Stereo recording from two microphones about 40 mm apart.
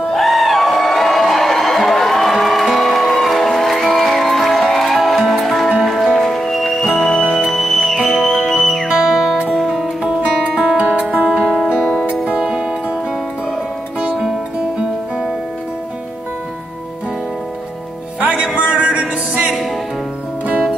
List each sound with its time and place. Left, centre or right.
0.1 s crowd: centre
2.6 s music: centre
9.1 s music: centre
9.5 s music: centre
10.6 s music: right
11.4 s music: centre
12.4 s music: centre
14.1 s music: centre
14.6 s music: right
18.2 s music: right